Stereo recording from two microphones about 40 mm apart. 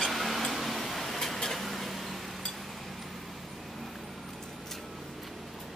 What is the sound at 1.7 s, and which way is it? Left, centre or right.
Vehicle, centre.